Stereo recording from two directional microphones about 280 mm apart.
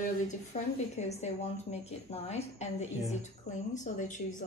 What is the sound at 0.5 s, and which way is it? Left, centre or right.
A woman's voice, left.